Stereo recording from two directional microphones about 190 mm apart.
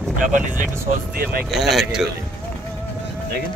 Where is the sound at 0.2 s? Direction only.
45° right (ahead or behind).